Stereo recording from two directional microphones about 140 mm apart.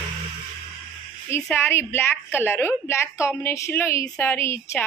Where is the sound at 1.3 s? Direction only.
15° left (ahead or behind).